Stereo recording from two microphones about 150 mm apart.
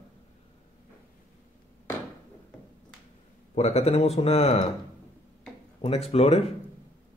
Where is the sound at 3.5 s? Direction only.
45° left (ahead or behind).